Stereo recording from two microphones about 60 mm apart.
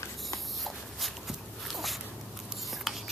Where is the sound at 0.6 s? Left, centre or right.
Centre.